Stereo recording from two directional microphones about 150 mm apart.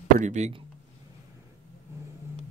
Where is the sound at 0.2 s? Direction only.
50° right (ahead or behind).